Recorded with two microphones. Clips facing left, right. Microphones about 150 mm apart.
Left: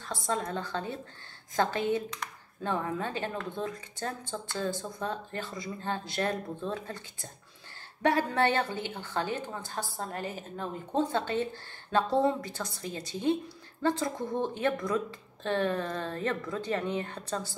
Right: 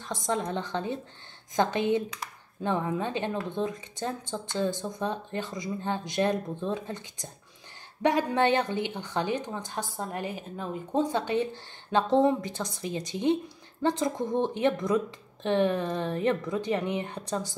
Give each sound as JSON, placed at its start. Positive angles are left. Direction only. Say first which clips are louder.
{"t": 0.0, "sound": "a woman's voice", "louder": "right 2 dB", "side_deg": -20}